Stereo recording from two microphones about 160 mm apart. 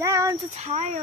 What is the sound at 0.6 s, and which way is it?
Speech, 45° right (ahead or behind).